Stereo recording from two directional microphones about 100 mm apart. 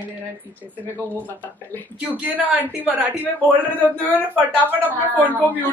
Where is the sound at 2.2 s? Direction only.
15° right (ahead or behind).